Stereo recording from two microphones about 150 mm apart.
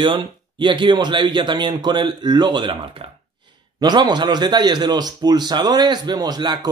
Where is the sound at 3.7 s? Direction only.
30° right (ahead or behind).